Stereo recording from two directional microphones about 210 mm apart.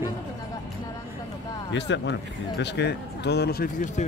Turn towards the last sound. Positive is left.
turn(degrees=40)  # may be behind; listen again after turning